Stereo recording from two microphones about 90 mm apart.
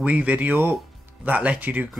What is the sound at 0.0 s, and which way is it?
Speech, 15° right (ahead or behind).